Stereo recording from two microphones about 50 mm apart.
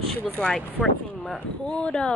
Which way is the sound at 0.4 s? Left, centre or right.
Centre.